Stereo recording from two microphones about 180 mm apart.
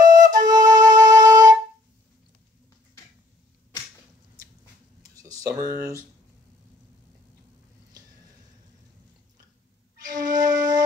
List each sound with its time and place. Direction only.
0.0 s flute: 20° right (ahead or behind)
5.1 s a sound: 20° right (ahead or behind)
10.0 s music: 20° right (ahead or behind)